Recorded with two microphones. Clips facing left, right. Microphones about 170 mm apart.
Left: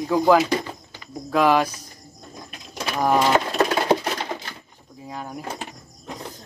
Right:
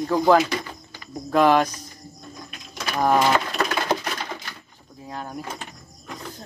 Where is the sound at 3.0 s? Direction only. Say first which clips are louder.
Even; 5° left (ahead or behind).